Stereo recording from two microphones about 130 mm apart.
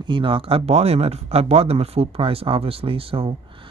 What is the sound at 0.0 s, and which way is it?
Speech, 40° right (ahead or behind).